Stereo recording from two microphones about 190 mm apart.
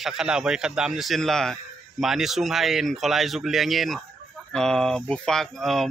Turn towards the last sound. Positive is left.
turn(degrees=0)  # may be behind; listen again after turning